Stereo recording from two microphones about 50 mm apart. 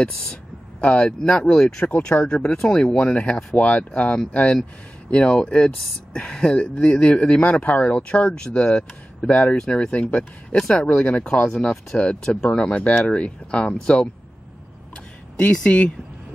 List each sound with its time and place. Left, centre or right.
0.0 s a sound: centre
0.8 s speech: left
3.5 s speech: left
10.9 s speech: left
11.4 s speech: centre
15.3 s speech: centre